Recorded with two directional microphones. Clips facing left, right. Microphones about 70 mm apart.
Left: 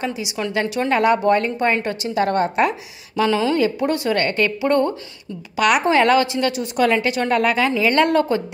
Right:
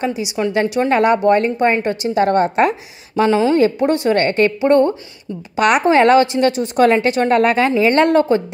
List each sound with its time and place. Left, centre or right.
0.0 s a woman's voice: right